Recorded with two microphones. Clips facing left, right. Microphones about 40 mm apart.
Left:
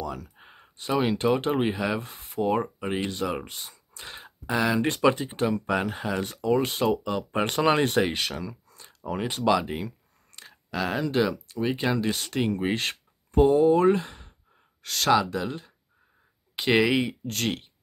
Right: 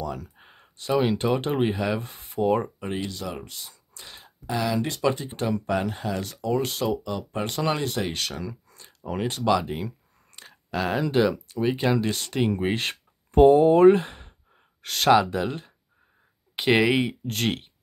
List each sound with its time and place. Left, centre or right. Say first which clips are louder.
0.0 s a sound: right 1 dB; centre
0.7 s speech: right 2 dB; centre
3.0 s speech: left 3 dB; left
3.3 s speech: left 3 dB; left
3.7 s whispering: left 4 dB; centre
4.5 s speech: left 2 dB; centre
7.3 s speech: left 4 dB; left
8.0 s speech: left 3 dB; centre
8.4 s a sound: right 1 dB; centre
9.3 s speech: even; centre
13.3 s speech: right 4 dB; right